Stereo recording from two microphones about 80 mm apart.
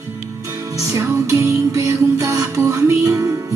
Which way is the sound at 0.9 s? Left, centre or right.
Right.